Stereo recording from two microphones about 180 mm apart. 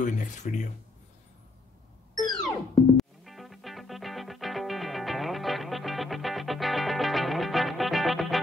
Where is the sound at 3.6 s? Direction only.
Centre (ahead or behind).